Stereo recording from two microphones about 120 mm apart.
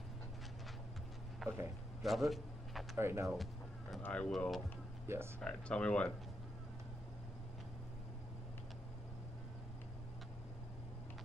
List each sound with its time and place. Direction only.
1.4 s a sound: centre (ahead or behind)
2.0 s speech: centre (ahead or behind)
3.0 s speech: 20° right (ahead or behind)
4.0 s speech: 10° left (ahead or behind)
5.0 s speech: 20° right (ahead or behind)
5.4 s speech: 10° left (ahead or behind)